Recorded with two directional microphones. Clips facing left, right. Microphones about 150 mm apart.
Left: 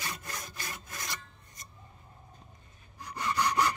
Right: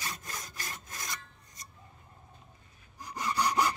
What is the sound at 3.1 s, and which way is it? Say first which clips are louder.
Sawing: even; 10° right (ahead or behind).